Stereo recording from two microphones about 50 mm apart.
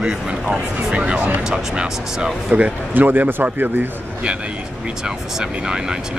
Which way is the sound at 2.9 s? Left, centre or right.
Right.